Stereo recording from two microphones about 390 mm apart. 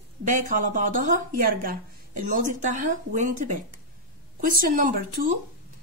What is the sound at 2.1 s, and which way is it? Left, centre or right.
A woman's voice, centre.